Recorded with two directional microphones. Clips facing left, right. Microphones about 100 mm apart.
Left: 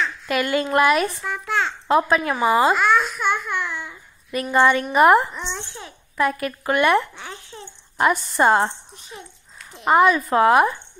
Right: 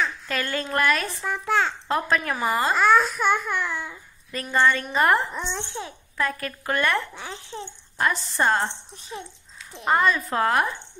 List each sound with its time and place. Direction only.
0.3 s speech: 15° left (ahead or behind)
1.2 s a child's voice: 30° right (ahead or behind)
1.9 s speech: 10° left (ahead or behind)
2.8 s speech: 35° right (ahead or behind)
4.3 s speech: 15° left (ahead or behind)
5.6 s a child's voice: 30° right (ahead or behind)
6.1 s speech: 15° left (ahead or behind)
7.2 s a child's voice: 30° right (ahead or behind)
8.0 s speech: 15° left (ahead or behind)
9.8 s speech: 10° left (ahead or behind)